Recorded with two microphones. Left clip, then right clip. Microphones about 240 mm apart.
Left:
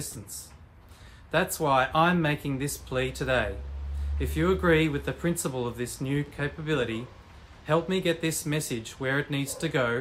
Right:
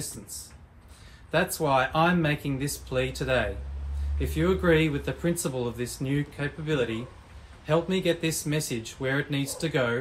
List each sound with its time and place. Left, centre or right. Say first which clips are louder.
1.6 s speech: left 1 dB; centre